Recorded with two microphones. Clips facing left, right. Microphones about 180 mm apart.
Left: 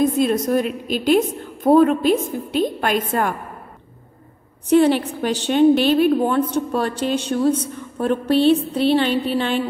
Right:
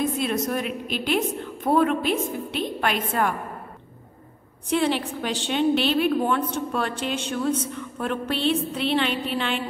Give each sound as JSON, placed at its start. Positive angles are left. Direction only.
{"t": 0.0, "sound": "a woman's voice", "side_deg": 40}
{"t": 4.6, "sound": "a woman's voice", "side_deg": 45}